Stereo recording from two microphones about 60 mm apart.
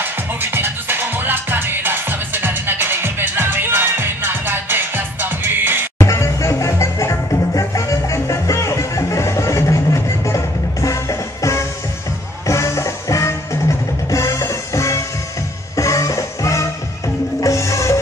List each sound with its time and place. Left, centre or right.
0.0 s music: right
5.9 s music: left